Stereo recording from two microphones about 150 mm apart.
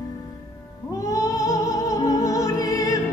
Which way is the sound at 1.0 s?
20° left (ahead or behind).